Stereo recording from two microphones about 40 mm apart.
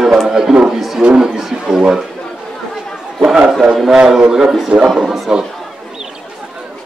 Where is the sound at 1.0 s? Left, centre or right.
Centre.